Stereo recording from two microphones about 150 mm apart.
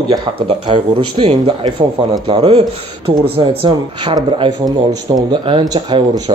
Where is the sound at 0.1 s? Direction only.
35° right (ahead or behind).